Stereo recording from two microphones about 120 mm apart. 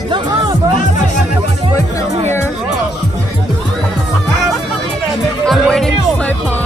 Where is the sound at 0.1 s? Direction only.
40° right (ahead or behind).